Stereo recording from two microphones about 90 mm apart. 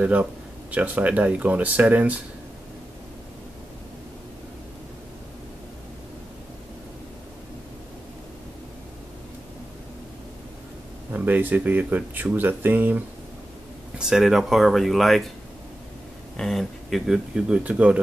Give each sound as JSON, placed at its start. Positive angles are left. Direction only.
{"t": 0.0, "sound": "speech", "side_deg": -15}
{"t": 11.1, "sound": "speech", "side_deg": -20}
{"t": 13.9, "sound": "speech", "side_deg": -5}
{"t": 16.3, "sound": "speech", "side_deg": 5}